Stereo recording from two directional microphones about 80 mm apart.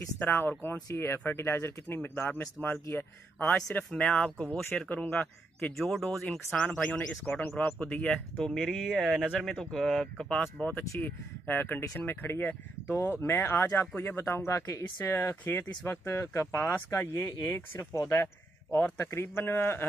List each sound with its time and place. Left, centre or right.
0.2 s speech: left
5.8 s speech: centre
7.1 s speech: centre
8.5 s speech: centre; by 17.1 s left
17.1 s speech: left
18.7 s speech: left